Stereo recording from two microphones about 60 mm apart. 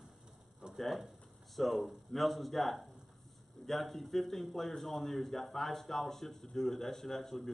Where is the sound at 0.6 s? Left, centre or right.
Centre.